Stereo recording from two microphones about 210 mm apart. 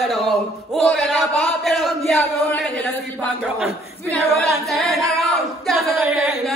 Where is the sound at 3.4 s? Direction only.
Centre (ahead or behind).